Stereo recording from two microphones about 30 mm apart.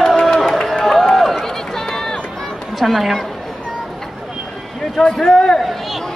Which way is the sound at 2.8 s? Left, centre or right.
Centre.